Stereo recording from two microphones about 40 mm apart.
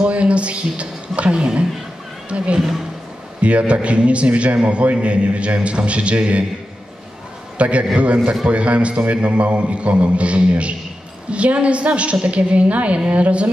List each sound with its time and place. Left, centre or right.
0.0 s a woman's voice: right
7.5 s a woman's voice: right